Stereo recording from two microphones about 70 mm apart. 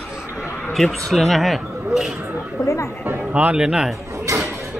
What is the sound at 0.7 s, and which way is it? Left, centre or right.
Speech, centre.